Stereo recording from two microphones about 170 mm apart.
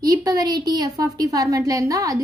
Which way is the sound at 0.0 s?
20° right (ahead or behind).